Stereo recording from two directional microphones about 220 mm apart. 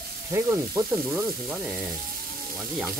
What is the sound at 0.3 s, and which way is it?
Frying, 10° right (ahead or behind).